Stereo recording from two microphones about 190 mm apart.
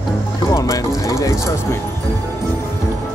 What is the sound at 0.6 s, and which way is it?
Speech, 15° left (ahead or behind).